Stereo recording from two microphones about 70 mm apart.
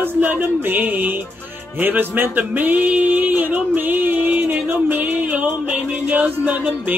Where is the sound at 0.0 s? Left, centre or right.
Right.